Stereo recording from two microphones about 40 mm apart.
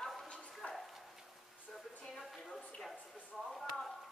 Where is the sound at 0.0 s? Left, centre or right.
Centre.